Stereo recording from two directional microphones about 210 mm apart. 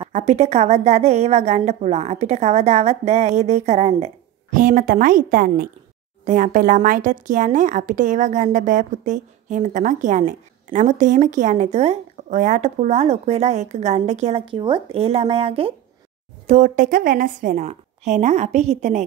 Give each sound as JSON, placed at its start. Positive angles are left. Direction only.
{"t": 0.1, "sound": "speech", "side_deg": -35}